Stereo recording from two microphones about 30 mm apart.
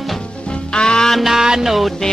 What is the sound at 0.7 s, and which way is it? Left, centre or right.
Music, left.